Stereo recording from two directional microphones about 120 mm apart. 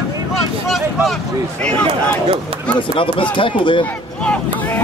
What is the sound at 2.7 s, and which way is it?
Speech, 45° left (ahead or behind).